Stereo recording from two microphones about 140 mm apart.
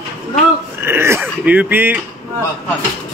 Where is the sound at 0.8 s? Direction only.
15° right (ahead or behind).